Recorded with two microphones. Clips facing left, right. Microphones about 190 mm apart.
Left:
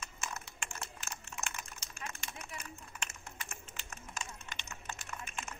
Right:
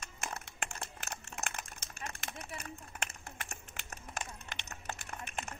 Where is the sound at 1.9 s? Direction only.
40° right (ahead or behind).